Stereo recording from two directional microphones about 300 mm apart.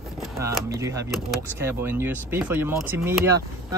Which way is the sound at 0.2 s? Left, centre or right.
Centre.